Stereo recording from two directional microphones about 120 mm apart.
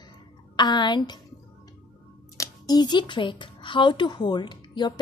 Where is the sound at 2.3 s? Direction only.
30° left (ahead or behind).